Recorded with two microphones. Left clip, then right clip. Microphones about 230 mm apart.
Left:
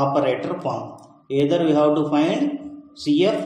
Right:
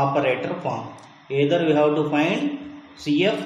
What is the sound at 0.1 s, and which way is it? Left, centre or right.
Speech, centre.